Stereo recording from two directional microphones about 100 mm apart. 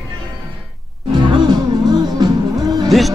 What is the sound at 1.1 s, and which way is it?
Music, 45° right (ahead or behind).